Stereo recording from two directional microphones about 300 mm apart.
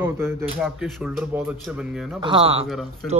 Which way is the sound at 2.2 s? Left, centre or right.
Centre.